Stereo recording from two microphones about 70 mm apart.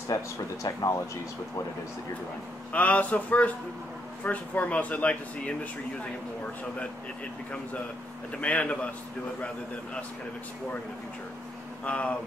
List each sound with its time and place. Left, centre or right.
0.1 s speech: left
2.7 s speech: left
8.4 s speech: centre
11.8 s speech: centre